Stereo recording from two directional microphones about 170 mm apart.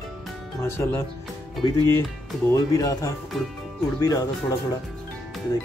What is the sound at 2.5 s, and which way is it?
Speech, 20° left (ahead or behind).